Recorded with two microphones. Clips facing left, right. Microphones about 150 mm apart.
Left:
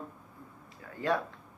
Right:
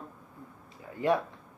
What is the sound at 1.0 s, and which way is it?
Speech, 20° right (ahead or behind).